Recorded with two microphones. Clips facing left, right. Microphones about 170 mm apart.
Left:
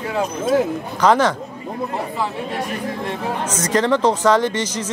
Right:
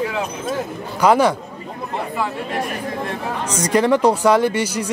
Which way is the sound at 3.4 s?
10° right (ahead or behind).